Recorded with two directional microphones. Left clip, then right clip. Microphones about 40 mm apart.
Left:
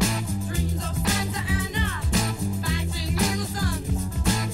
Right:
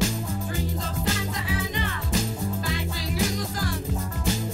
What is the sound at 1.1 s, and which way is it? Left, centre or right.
Music, left.